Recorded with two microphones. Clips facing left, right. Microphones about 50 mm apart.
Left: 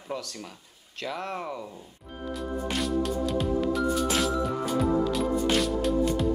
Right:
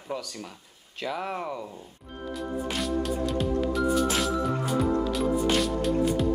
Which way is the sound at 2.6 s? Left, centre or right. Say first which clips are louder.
Left 2 dB; centre.